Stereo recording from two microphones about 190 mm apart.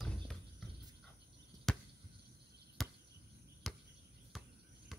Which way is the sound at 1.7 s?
Centre (ahead or behind).